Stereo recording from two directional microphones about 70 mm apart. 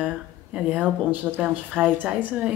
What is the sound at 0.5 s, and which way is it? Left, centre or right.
Speech, right.